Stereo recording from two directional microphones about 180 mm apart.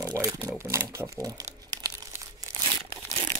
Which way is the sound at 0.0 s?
20° right (ahead or behind).